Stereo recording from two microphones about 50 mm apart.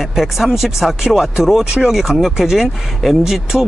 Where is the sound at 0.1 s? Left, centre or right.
Centre.